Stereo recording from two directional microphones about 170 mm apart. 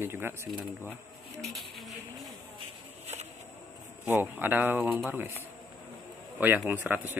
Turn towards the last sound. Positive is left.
turn(degrees=-10)  # may be behind; listen again after turning